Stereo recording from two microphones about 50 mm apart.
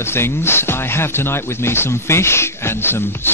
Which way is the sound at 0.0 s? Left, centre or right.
Left.